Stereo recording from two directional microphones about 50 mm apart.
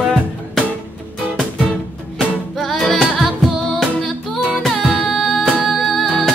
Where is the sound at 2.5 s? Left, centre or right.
Centre.